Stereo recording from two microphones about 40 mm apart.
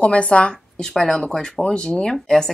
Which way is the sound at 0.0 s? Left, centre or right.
Left.